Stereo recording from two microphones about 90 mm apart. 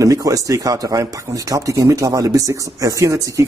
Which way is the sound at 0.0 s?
40° right (ahead or behind).